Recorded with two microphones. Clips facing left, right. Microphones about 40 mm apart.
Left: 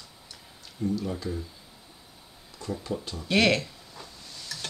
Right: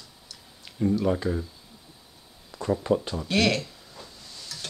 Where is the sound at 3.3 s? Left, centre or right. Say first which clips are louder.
Left 1 dB; centre.